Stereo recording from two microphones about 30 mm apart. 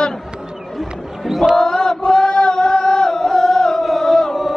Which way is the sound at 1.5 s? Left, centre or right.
Left.